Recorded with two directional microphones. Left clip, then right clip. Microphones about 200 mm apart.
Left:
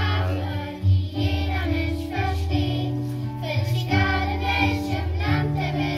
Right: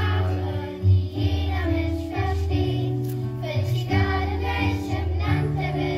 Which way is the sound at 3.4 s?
15° right (ahead or behind).